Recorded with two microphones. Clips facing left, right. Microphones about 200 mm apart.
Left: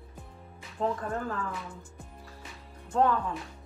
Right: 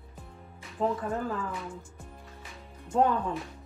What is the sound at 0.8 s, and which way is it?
Speech, 5° right (ahead or behind).